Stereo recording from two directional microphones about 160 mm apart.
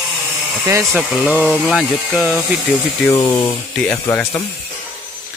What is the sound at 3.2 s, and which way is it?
Speech, 30° left (ahead or behind).